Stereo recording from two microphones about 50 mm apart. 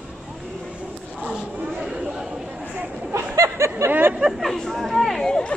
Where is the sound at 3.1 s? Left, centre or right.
Right.